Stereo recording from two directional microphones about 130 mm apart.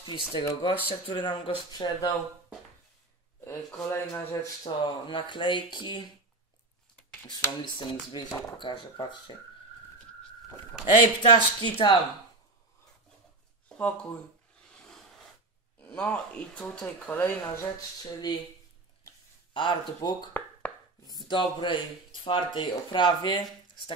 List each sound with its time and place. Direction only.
0.0 s speech: 35° left (ahead or behind)
3.3 s speech: 20° left (ahead or behind)
4.6 s speech: 40° left (ahead or behind)
7.2 s speech: 35° left (ahead or behind)
11.2 s speech: 40° left (ahead or behind)
13.7 s speech: 10° left (ahead or behind)
14.7 s a sound: 5° left (ahead or behind)
15.8 s speech: 10° left (ahead or behind)
17.7 s speech: 30° left (ahead or behind)
19.5 s speech: 35° left (ahead or behind)